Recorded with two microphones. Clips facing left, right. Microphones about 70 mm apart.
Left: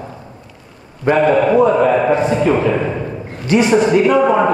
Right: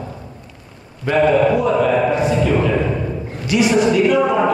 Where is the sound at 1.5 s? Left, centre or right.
Left.